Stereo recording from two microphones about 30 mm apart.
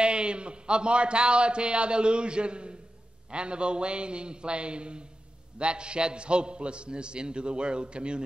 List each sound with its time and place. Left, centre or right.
0.0 s a man's voice: right